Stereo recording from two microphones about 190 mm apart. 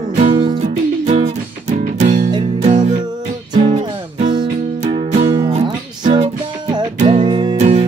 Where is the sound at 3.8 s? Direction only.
25° right (ahead or behind).